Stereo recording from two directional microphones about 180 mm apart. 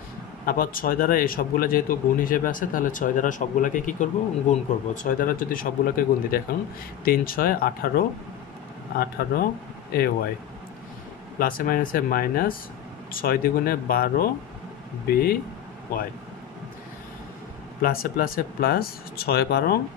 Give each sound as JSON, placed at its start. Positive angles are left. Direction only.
{"t": 0.5, "sound": "speech", "side_deg": 55}
{"t": 11.3, "sound": "speech", "side_deg": 50}
{"t": 17.8, "sound": "speech", "side_deg": 55}